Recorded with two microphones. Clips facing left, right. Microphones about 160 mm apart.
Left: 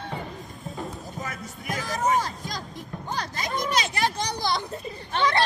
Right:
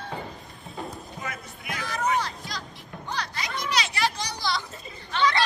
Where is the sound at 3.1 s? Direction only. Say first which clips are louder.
Left 2 dB; 45° left (ahead or behind).